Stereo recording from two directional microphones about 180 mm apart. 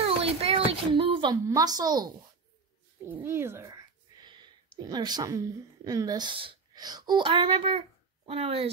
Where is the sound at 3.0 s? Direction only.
10° right (ahead or behind).